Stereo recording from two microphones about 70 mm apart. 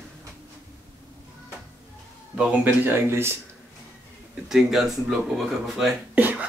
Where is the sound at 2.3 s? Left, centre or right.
Right.